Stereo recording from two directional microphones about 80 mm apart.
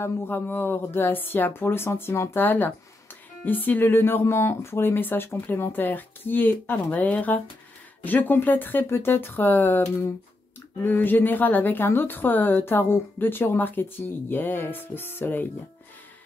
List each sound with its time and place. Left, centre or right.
0.0 s a woman's voice: left